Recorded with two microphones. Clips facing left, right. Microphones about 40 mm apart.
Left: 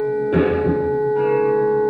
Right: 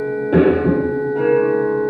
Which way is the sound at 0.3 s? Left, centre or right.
Centre.